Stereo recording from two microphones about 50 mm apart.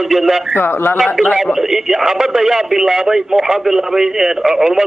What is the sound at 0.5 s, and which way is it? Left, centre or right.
Speech, left.